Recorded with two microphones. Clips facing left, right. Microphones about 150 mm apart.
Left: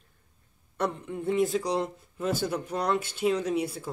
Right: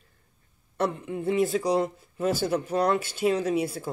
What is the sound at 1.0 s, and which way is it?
Speech, 90° right.